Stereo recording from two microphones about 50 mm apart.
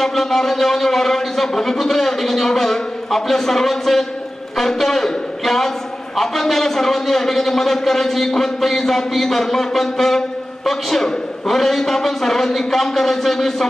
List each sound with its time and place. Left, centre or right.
0.0 s a man's voice: centre